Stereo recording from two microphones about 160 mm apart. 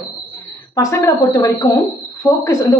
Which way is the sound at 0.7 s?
20° left (ahead or behind).